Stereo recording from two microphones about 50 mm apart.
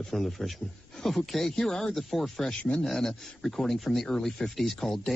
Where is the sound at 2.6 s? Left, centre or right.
Left.